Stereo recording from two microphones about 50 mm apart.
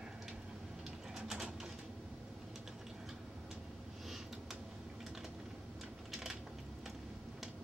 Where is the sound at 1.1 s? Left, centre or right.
Centre.